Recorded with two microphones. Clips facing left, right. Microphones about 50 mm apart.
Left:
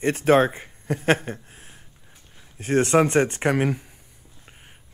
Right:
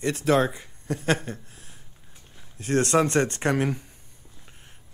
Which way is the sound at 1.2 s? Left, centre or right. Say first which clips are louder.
Left 2 dB; left.